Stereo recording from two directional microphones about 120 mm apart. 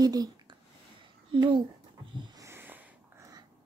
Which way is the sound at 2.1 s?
40° right (ahead or behind).